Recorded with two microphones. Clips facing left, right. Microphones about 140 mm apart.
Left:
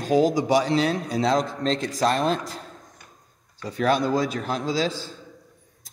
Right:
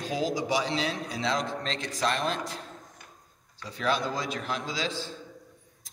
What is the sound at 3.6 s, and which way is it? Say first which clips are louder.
A man's voice: left 7 dB; 45° left (ahead or behind).